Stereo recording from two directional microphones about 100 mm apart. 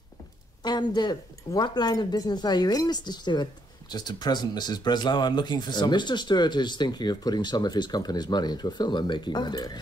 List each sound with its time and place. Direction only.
0.7 s speech: 45° left (ahead or behind)